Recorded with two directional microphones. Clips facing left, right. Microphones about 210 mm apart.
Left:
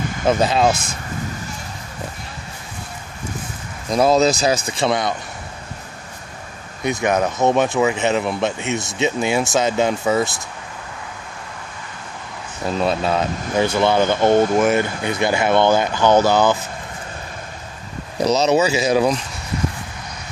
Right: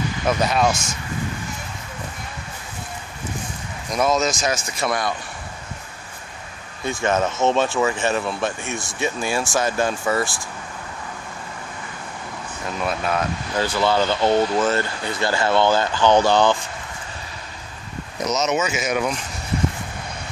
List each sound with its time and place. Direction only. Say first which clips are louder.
0.3 s speech: left 4 dB; 25° left (ahead or behind)
0.7 s speech: left 3 dB; 55° left (ahead or behind)
3.9 s speech: left 5 dB; 30° left (ahead or behind)
6.8 s speech: left 2 dB; 15° left (ahead or behind)
12.7 s speech: left 4 dB; 30° left (ahead or behind)
14.3 s speech: left 5 dB; 50° left (ahead or behind)
14.6 s speech: left 4 dB; 15° left (ahead or behind)
18.1 s speech: left 6 dB; 30° left (ahead or behind)